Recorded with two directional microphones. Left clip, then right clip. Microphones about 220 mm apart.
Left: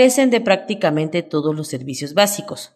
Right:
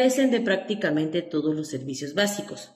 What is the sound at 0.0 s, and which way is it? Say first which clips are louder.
A woman's voice: left 8 dB; 50° left (ahead or behind).